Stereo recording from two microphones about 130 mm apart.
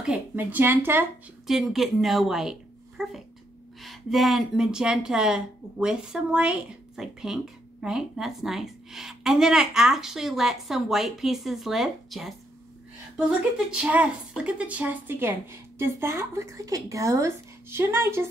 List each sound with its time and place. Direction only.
0.0 s speech: 10° right (ahead or behind)
1.5 s a woman's voice: centre (ahead or behind); by 18.3 s 20° right (ahead or behind)